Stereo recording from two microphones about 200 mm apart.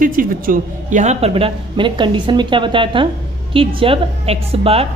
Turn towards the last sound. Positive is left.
turn(degrees=-30)  # may be behind; listen again after turning